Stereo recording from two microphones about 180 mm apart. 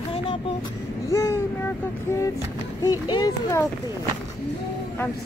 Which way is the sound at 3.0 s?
20° left (ahead or behind).